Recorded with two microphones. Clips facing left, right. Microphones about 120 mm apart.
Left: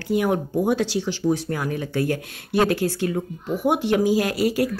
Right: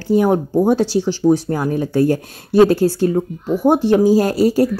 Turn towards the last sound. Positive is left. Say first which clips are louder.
# right 7 dB
turn(degrees=-35)  # may be behind; listen again after turning